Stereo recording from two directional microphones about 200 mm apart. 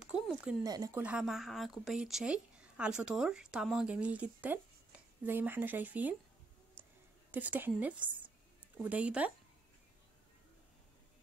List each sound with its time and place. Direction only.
0.0 s a sound: 5° right (ahead or behind)
0.7 s speech: 20° right (ahead or behind)
1.0 s speech: 5° right (ahead or behind)
7.2 s a woman's voice: 10° right (ahead or behind)